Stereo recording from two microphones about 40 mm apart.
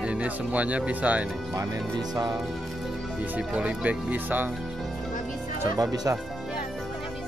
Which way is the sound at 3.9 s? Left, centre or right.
Right.